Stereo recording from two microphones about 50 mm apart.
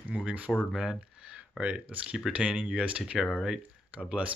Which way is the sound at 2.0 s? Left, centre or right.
Centre.